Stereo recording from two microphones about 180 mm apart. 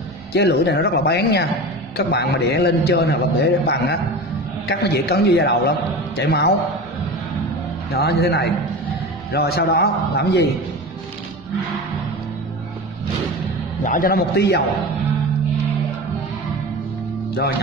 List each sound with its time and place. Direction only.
0.3 s a man's voice: 65° left (ahead or behind)
7.9 s a man's voice: 65° left (ahead or behind)
13.8 s a man's voice: 50° left (ahead or behind)